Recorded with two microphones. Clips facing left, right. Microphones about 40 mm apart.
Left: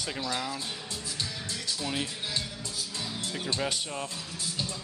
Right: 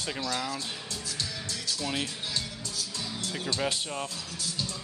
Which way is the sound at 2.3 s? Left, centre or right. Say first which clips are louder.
Even; centre.